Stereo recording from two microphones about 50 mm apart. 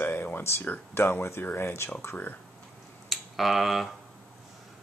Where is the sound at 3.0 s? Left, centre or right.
Centre.